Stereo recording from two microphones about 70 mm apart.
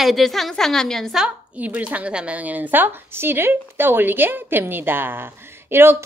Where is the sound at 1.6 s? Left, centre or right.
Right.